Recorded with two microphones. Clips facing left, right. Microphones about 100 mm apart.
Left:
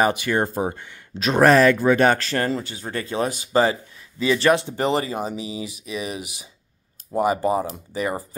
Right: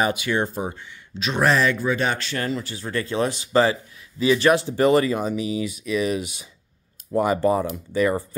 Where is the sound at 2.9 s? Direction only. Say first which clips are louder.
Right 1 dB; 25° left (ahead or behind).